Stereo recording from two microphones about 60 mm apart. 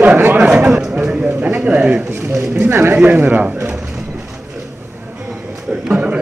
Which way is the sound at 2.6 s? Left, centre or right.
Right.